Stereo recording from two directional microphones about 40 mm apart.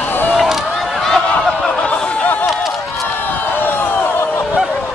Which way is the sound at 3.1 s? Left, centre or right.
Left.